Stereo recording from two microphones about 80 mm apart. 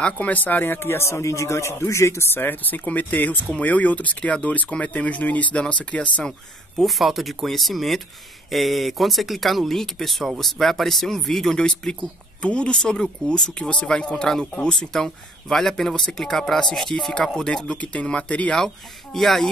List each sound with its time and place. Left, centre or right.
0.0 s speech: centre
6.8 s speech: centre
19.1 s speech: centre